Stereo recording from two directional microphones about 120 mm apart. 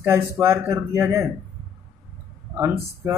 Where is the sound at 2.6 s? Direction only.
20° right (ahead or behind).